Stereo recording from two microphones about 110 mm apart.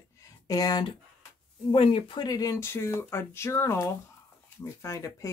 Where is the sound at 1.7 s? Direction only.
55° left (ahead or behind); by 5.3 s 25° left (ahead or behind).